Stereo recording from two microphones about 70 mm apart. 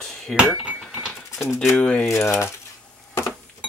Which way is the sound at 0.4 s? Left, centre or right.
Centre.